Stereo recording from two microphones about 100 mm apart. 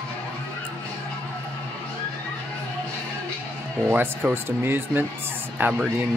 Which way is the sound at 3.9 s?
20° right (ahead or behind).